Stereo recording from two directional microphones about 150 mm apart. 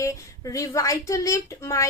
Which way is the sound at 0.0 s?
20° left (ahead or behind).